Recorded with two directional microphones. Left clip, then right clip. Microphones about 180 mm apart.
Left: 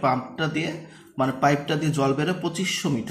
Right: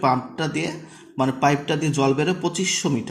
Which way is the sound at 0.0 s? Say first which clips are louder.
Right 2 dB; 20° right (ahead or behind).